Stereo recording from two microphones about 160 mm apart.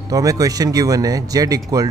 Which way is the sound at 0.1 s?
20° right (ahead or behind).